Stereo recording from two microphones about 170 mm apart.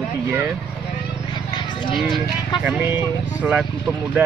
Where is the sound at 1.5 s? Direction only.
25° left (ahead or behind).